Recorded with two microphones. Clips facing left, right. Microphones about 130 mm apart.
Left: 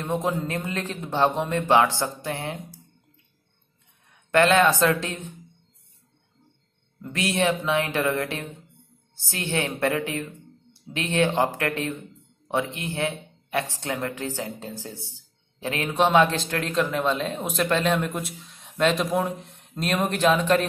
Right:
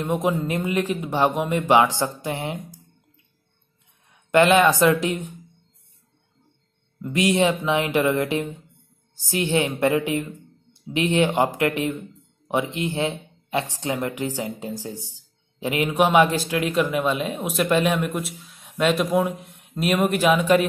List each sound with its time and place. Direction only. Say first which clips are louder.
0.0 s a man's voice: right 3 dB; 15° right (ahead or behind)
4.3 s a man's voice: right 2 dB; 15° right (ahead or behind)
7.0 s a man's voice: right 5 dB; 15° right (ahead or behind)